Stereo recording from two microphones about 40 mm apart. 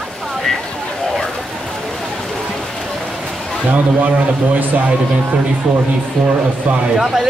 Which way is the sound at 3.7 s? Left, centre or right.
Right.